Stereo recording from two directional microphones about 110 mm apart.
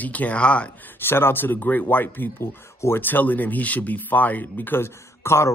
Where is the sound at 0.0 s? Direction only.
15° left (ahead or behind).